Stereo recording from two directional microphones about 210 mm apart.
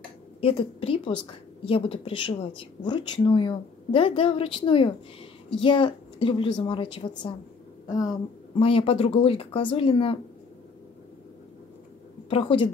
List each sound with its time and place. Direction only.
0.4 s speech: 25° left (ahead or behind)
8.5 s speech: 25° left (ahead or behind)
12.3 s speech: 25° left (ahead or behind)